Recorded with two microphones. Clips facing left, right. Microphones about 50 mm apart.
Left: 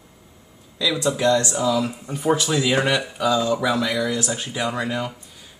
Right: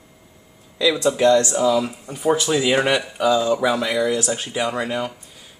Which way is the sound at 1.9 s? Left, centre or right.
Centre.